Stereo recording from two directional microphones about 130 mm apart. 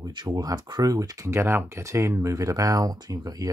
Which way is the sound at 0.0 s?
30° right (ahead or behind).